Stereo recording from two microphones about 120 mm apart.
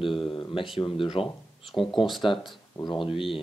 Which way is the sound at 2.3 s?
45° left (ahead or behind).